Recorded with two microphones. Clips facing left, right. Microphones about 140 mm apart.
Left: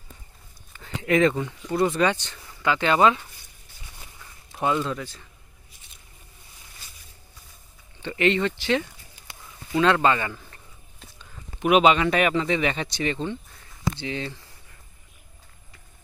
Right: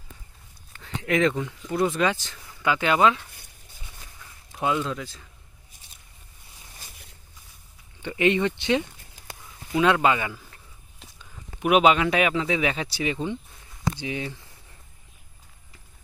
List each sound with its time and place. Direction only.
0.7 s speech: centre (ahead or behind)
4.5 s speech: 5° right (ahead or behind)
8.0 s a man's voice: 15° right (ahead or behind)